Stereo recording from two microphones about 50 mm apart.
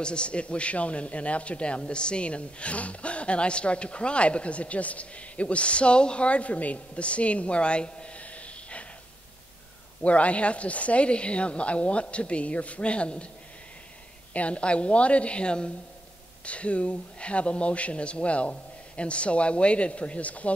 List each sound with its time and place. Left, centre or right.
0.0 s speech: centre
10.0 s speech: left
14.3 s speech: left